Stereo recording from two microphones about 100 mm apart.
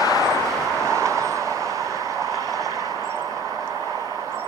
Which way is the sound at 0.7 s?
30° right (ahead or behind).